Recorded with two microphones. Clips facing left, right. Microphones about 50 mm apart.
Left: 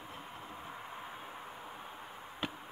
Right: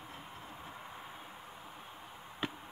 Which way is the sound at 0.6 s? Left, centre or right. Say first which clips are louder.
Left 2 dB; centre.